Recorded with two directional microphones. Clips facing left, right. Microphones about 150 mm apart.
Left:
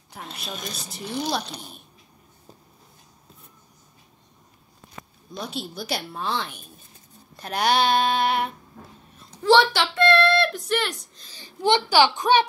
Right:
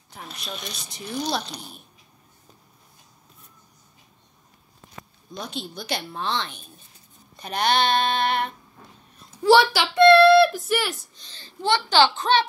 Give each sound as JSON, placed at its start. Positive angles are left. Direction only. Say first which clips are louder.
{"t": 0.5, "sound": "speech", "louder": "left 1 dB", "side_deg": 45}
{"t": 0.8, "sound": "speech", "louder": "even", "side_deg": 5}
{"t": 5.3, "sound": "a child's voice", "louder": "left 1 dB", "side_deg": 5}
{"t": 9.4, "sound": "speech", "louder": "right 1 dB", "side_deg": -5}
{"t": 11.2, "sound": "a child's voice", "louder": "left 3 dB", "side_deg": 15}